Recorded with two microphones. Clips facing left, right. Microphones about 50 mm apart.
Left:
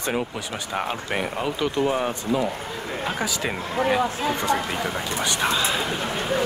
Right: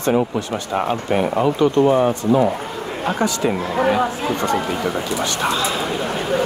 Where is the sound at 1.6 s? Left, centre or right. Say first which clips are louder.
Right 8 dB; right.